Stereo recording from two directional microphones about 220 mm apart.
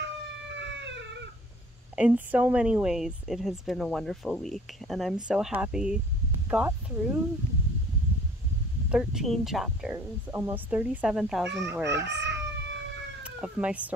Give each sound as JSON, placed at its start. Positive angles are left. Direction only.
{"t": 0.5, "sound": "cat", "side_deg": -55}
{"t": 2.0, "sound": "a woman's voice", "side_deg": -5}
{"t": 8.9, "sound": "a woman's voice", "side_deg": 0}
{"t": 11.8, "sound": "chicken", "side_deg": -50}
{"t": 13.2, "sound": "speech", "side_deg": -5}